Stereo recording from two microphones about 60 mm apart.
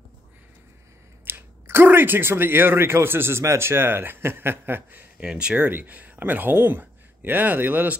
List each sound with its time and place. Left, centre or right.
1.2 s speech: right
5.2 s speech: centre
5.7 s speech: right